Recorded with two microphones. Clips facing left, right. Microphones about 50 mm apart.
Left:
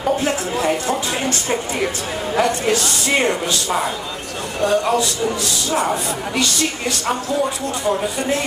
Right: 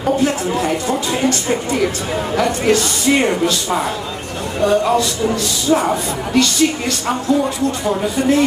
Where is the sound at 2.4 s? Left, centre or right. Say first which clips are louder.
Left 1 dB; left.